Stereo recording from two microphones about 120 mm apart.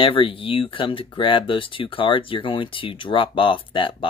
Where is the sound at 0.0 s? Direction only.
45° left (ahead or behind).